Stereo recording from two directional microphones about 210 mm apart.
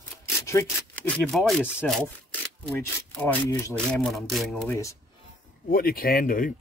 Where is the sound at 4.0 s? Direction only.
Centre (ahead or behind).